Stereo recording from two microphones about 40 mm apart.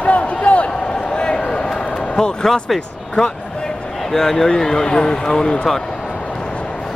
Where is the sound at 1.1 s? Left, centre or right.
Left.